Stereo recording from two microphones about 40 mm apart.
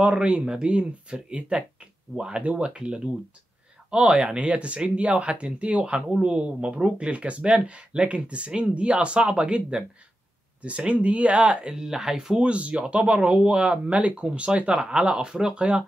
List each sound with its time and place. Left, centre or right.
0.0 s speech: right
12.4 s speech: right
14.8 s speech: centre